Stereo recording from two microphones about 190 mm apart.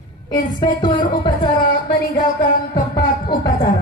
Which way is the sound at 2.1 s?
40° left (ahead or behind).